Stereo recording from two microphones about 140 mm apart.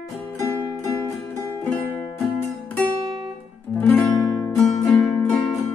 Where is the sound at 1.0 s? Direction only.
20° left (ahead or behind).